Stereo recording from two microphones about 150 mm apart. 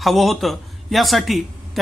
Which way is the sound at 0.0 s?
Centre (ahead or behind).